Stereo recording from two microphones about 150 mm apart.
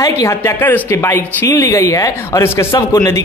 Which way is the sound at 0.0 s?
25° left (ahead or behind).